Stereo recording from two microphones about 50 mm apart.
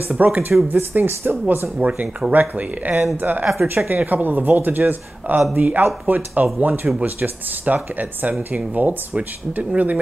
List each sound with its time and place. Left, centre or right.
0.2 s speech: right